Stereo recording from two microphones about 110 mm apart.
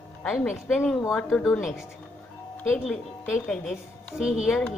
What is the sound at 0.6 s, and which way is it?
A woman's voice, 5° left (ahead or behind).